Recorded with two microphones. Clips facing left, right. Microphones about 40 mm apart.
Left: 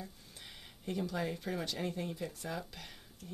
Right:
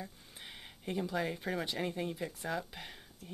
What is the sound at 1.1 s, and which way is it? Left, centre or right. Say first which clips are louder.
Speech: right 2 dB; centre.